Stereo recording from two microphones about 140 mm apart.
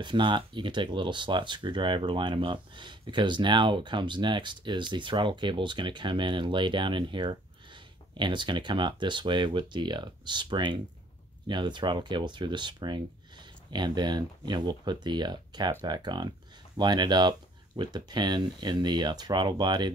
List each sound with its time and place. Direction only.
0.0 s speech: 35° right (ahead or behind)